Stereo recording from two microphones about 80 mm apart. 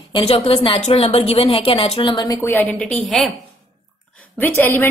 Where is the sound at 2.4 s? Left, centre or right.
Left.